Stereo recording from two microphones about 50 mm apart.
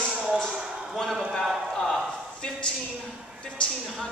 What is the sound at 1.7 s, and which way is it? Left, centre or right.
Speech, centre.